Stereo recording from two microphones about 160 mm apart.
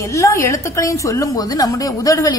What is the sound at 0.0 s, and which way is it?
A woman's voice, 20° left (ahead or behind).